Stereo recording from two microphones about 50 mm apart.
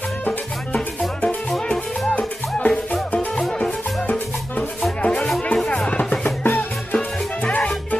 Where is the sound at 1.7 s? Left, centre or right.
Left.